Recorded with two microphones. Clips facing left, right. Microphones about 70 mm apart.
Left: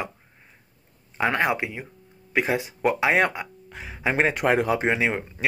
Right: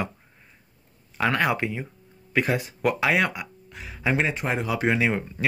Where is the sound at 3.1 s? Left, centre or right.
Left.